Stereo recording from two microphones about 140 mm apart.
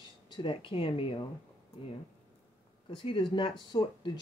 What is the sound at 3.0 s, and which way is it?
Speech, 35° left (ahead or behind).